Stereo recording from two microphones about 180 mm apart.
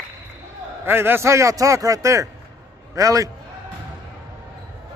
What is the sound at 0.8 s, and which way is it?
A man's voice, 10° right (ahead or behind).